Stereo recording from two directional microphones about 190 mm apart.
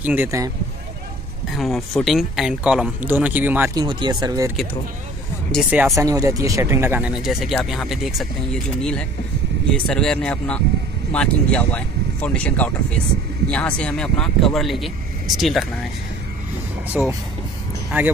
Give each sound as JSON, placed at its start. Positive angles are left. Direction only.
{"t": 0.0, "sound": "speech", "side_deg": -10}
{"t": 1.5, "sound": "speech", "side_deg": 0}
{"t": 3.7, "sound": "speech", "side_deg": -25}
{"t": 5.7, "sound": "speech", "side_deg": -10}
{"t": 6.0, "sound": "speech", "side_deg": -20}
{"t": 9.7, "sound": "speech", "side_deg": 5}
{"t": 17.0, "sound": "speech", "side_deg": -5}